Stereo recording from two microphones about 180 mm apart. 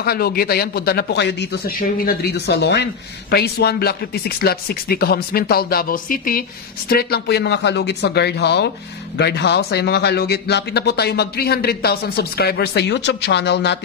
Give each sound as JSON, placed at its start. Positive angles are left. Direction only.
{"t": 0.0, "sound": "speech", "side_deg": 60}
{"t": 6.9, "sound": "speech", "side_deg": 60}